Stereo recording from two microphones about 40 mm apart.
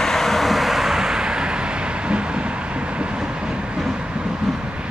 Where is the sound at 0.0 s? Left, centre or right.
Centre.